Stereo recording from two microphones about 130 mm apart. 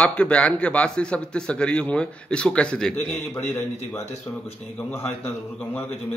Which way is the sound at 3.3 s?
20° left (ahead or behind).